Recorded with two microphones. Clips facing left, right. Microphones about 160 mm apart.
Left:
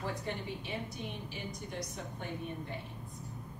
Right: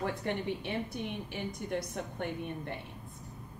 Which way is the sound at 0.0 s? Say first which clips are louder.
Right 4 dB; 60° right (ahead or behind).